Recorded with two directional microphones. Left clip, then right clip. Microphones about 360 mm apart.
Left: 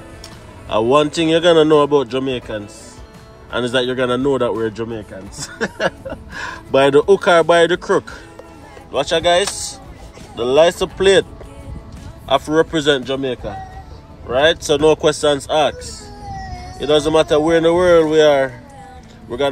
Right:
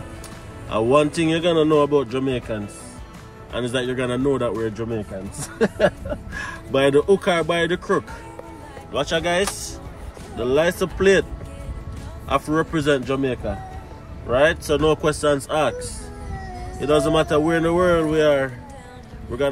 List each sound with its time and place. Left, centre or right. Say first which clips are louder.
0.7 s speech: left 4 dB; centre
6.3 s speech: left 7 dB; centre
12.3 s speech: left 6 dB; centre
16.7 s speech: left 4 dB; centre